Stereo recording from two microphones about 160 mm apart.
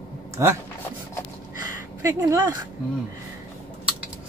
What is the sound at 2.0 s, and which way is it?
Speech, 20° right (ahead or behind).